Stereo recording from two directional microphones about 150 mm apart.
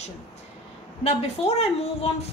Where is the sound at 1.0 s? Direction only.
45° left (ahead or behind).